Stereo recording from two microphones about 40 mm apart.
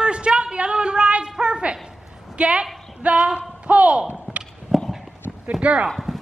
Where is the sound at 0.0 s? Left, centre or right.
Right.